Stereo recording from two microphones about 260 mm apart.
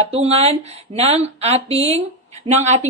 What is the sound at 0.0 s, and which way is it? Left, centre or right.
Speech, right.